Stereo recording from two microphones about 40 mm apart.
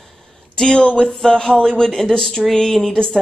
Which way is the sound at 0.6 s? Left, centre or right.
Centre.